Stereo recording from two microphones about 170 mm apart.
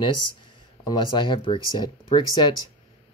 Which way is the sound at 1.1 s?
30° left (ahead or behind).